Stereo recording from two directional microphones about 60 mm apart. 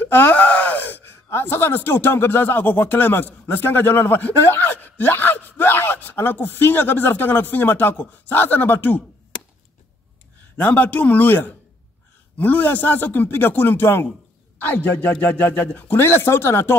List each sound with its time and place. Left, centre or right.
0.0 s speech: left
10.6 s speech: left